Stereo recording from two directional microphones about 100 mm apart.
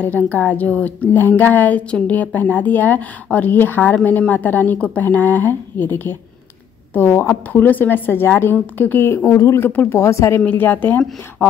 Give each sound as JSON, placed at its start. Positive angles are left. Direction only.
{"t": 0.0, "sound": "a woman's voice", "side_deg": 15}
{"t": 9.7, "sound": "a woman's voice", "side_deg": 20}
{"t": 9.9, "sound": "a woman's voice", "side_deg": 30}
{"t": 10.4, "sound": "a woman's voice", "side_deg": 20}